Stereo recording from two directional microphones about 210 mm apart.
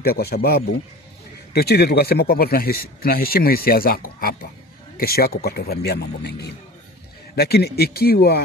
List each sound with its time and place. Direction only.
0.0 s speech: 50° left (ahead or behind)